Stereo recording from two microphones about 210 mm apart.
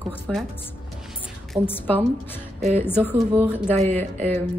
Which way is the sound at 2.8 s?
10° left (ahead or behind).